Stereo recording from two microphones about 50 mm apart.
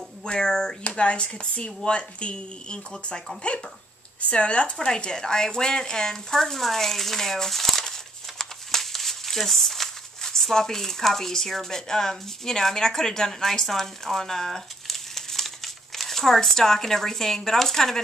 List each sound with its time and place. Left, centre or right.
0.2 s speech: centre
0.8 s speech: left
4.3 s speech: left